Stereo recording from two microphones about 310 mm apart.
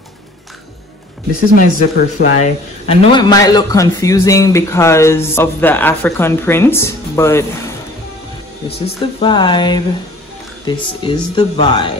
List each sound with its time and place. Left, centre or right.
1.6 s a man's voice: left; by 7.4 s centre
8.6 s a man's voice: centre